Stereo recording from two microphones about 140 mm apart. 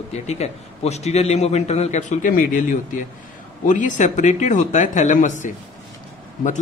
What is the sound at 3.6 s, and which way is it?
A man's voice, 65° left (ahead or behind).